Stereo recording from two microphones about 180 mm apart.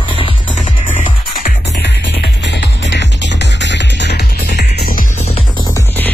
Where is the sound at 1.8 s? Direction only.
75° left (ahead or behind); by 5.0 s 55° left (ahead or behind).